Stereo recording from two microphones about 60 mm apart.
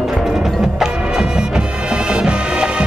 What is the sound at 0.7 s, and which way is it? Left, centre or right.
Music, centre.